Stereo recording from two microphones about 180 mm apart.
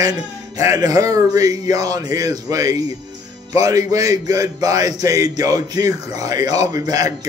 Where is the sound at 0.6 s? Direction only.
15° right (ahead or behind).